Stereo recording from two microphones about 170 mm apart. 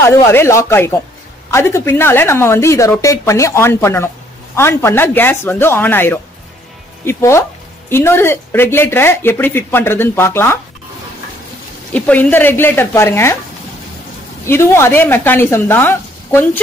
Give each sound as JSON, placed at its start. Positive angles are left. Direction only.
{"t": 0.1, "sound": "speech", "side_deg": 15}
{"t": 11.9, "sound": "speech", "side_deg": 10}
{"t": 14.4, "sound": "speech", "side_deg": 15}